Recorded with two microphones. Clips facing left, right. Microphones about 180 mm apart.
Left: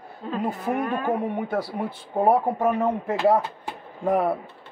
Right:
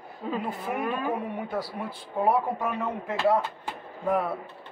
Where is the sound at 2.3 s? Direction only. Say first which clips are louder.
Left 5 dB; 40° left (ahead or behind).